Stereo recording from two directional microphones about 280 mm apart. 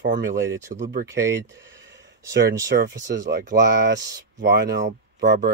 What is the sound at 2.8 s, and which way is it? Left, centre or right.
Speech, right.